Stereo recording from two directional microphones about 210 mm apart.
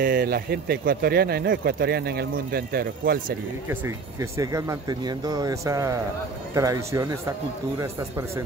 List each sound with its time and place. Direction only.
0.0 s speech: 45° right (ahead or behind)
3.6 s speech: 15° right (ahead or behind)